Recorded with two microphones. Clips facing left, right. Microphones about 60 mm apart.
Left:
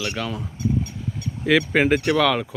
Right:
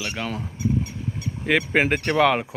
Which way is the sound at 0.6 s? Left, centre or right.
Centre.